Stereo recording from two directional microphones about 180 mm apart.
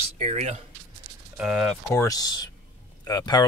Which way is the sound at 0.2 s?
35° right (ahead or behind).